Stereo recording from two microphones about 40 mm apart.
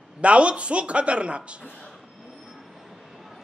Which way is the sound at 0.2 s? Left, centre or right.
Right.